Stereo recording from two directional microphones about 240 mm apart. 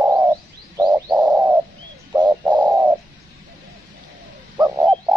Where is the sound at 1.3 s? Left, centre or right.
Centre.